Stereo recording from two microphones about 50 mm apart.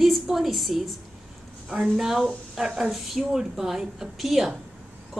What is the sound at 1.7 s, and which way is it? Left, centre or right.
A woman's voice, centre.